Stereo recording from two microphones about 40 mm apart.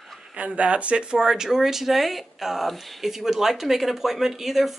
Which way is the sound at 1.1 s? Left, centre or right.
Centre.